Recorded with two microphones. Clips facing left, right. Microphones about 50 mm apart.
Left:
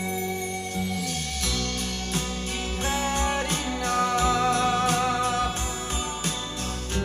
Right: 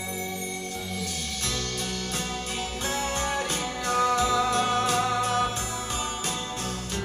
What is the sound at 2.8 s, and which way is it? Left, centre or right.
Music, left.